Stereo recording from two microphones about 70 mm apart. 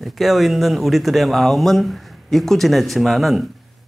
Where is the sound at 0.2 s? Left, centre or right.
Centre.